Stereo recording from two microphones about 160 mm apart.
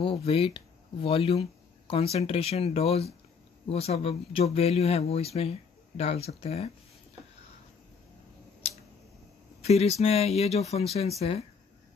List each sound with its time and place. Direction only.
0.0 s speech: 40° left (ahead or behind)
9.6 s speech: 40° left (ahead or behind)